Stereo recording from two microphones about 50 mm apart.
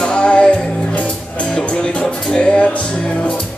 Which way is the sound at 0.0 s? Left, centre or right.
Centre.